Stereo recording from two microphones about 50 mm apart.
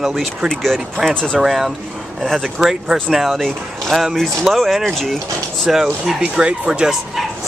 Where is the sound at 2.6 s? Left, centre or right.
Centre.